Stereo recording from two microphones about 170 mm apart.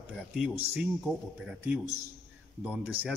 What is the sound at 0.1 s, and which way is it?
A man's voice, 5° right (ahead or behind).